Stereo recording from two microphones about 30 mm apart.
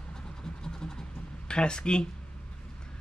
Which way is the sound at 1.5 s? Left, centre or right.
Left.